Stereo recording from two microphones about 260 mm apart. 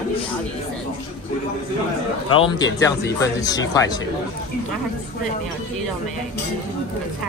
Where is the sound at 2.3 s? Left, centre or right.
Centre.